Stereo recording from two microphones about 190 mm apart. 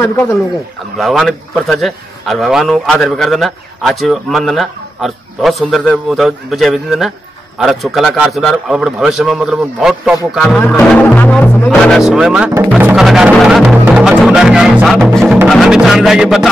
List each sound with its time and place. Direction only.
0.9 s a man's voice: centre (ahead or behind)
14.1 s music: centre (ahead or behind)
15.4 s a man's voice: centre (ahead or behind)